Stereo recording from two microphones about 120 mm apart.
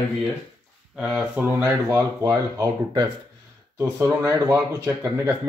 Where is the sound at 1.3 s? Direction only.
20° right (ahead or behind).